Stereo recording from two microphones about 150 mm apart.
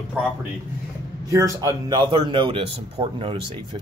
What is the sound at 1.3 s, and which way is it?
A man's voice, 20° right (ahead or behind).